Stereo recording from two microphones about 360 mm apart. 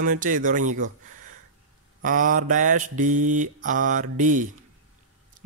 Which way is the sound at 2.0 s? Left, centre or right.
Right.